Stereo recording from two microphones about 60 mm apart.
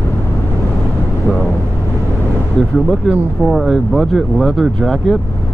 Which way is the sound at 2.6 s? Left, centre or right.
Centre.